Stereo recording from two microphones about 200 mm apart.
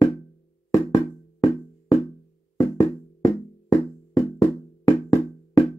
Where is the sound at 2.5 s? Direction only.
15° left (ahead or behind).